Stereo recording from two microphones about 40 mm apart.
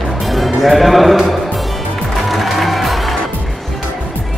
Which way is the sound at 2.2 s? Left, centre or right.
Centre.